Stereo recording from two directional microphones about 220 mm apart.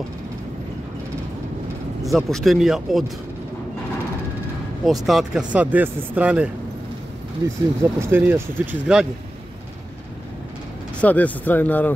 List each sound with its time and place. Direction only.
2.1 s speech: centre (ahead or behind)
5.0 s speech: centre (ahead or behind)
11.0 s speech: 5° left (ahead or behind)